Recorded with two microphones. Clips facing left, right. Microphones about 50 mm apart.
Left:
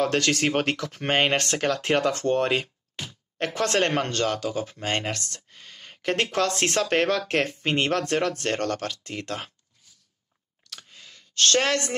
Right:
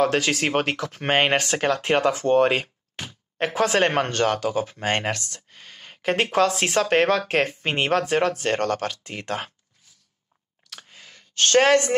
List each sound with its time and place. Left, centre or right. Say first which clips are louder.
0.0 s speech: right 2 dB; centre
1.1 s speech: right 2 dB; centre
3.3 s speech: right 3 dB; centre
3.9 s speech: right 3 dB; right
8.8 s speech: right 3 dB; right
10.9 s a sound: right 2 dB; right